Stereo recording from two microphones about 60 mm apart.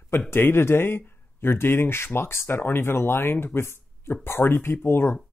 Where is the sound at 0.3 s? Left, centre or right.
Left.